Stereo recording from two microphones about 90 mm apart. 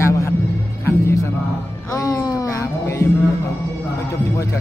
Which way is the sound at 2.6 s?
30° left (ahead or behind).